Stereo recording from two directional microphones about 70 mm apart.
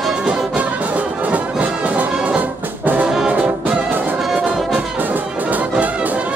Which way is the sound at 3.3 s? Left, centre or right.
Right.